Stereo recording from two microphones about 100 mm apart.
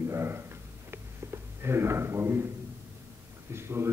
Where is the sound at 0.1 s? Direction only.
25° right (ahead or behind).